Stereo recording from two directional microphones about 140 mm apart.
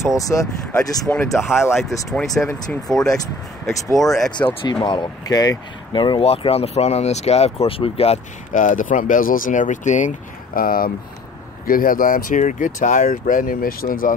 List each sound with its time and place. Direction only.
0.2 s speech: 20° left (ahead or behind)
1.1 s speech: 5° left (ahead or behind)
4.8 s speech: 30° left (ahead or behind)
8.5 s speech: 70° left (ahead or behind); by 14.1 s 85° left